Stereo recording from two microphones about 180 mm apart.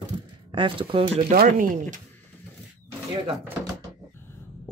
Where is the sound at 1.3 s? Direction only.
50° right (ahead or behind).